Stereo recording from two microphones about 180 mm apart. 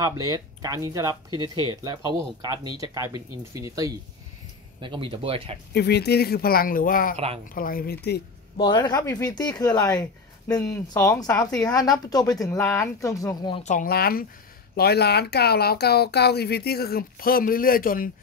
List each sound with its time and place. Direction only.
0.0 s speech: 20° right (ahead or behind)
5.7 s speech: 65° left (ahead or behind)
8.5 s speech: 25° left (ahead or behind)
13.7 s speech: 50° left (ahead or behind)